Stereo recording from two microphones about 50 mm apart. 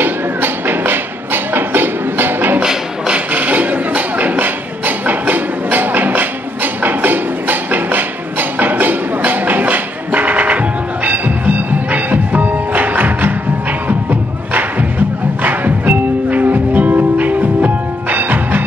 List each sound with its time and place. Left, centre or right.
0.0 s music: right
2.6 s music: centre
3.3 s a sound: right
11.1 s music: right
15.4 s music: right